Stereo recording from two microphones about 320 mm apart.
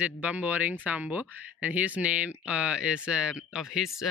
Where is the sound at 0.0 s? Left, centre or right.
Centre.